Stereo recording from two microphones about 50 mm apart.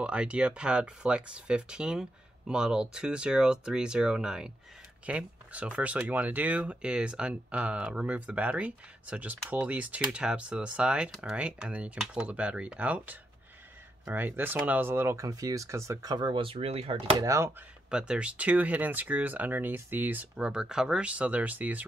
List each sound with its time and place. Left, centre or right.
0.0 s speech: right
5.0 s speech: right
14.1 s speech: right
17.8 s speech: centre; by 20.2 s right
20.4 s speech: centre
21.0 s speech: right